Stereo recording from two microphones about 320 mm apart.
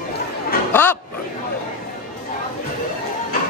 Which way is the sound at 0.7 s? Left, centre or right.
Centre.